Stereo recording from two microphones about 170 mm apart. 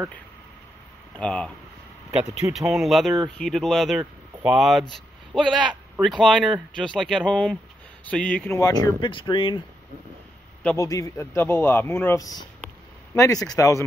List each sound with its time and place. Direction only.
1.1 s speech: 5° left (ahead or behind)
2.5 s speech: centre (ahead or behind)
4.0 s a sound: 10° right (ahead or behind)
4.6 s speech: centre (ahead or behind)
8.5 s speech: 20° left (ahead or behind)
10.6 s a man's voice: 10° left (ahead or behind)